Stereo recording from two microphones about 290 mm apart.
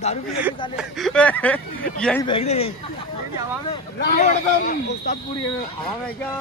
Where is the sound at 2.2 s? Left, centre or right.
Centre.